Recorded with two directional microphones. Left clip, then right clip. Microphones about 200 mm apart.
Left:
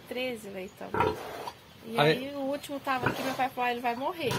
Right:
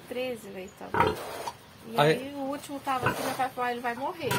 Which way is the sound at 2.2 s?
20° left (ahead or behind).